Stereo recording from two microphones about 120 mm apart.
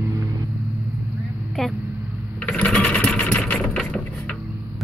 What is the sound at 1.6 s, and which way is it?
Vehicle, 5° left (ahead or behind).